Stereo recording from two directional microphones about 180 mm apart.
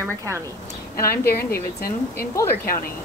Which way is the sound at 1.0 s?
15° left (ahead or behind).